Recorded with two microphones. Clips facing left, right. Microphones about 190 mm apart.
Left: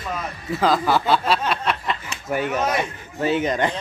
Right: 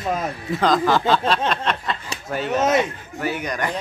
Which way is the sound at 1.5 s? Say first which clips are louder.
Even; 10° left (ahead or behind).